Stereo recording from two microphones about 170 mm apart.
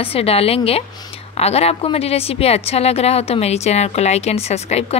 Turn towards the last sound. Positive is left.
turn(degrees=40)  # may be behind; listen again after turning